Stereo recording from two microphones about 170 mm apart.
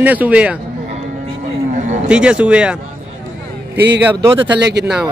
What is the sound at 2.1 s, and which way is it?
Speech, 5° right (ahead or behind).